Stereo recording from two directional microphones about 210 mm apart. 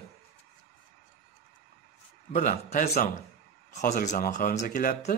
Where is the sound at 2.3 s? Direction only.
40° left (ahead or behind).